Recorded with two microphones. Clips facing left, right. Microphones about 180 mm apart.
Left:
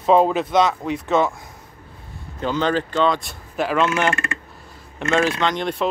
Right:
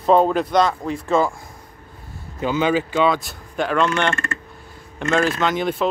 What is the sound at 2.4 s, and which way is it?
Speech, 10° right (ahead or behind).